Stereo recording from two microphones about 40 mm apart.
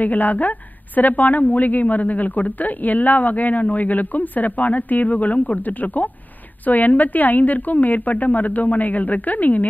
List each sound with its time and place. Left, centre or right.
0.0 s a woman's voice: left